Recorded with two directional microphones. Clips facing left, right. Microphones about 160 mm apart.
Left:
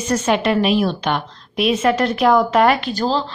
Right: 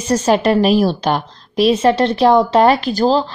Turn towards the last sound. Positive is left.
turn(degrees=-35)  # may be behind; listen again after turning